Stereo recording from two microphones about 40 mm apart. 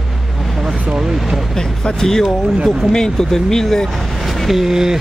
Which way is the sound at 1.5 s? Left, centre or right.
Centre.